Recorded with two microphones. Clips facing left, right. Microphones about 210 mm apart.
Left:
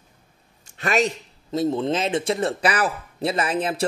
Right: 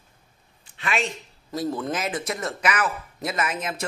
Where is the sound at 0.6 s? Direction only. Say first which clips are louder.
Left 6 dB; 45° left (ahead or behind).